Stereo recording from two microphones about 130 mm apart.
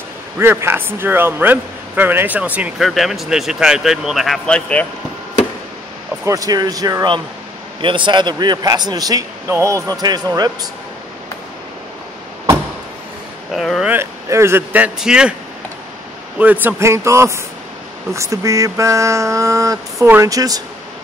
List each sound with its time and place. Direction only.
0.4 s a man's voice: 20° right (ahead or behind); by 4.8 s 10° left (ahead or behind)
6.2 s a sound: 25° right (ahead or behind)
7.8 s a man's voice: 40° right (ahead or behind)
13.5 s speech: centre (ahead or behind)
13.9 s speech: 20° right (ahead or behind)
16.3 s a sound: 15° right (ahead or behind)